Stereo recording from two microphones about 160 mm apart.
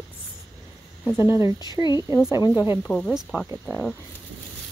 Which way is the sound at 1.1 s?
25° left (ahead or behind).